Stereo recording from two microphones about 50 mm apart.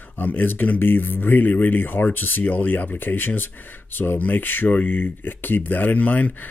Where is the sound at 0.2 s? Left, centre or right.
Left.